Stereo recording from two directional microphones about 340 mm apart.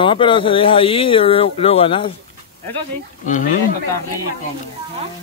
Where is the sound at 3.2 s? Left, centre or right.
Left.